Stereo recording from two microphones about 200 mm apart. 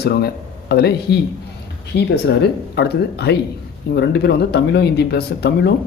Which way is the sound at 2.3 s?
55° left (ahead or behind).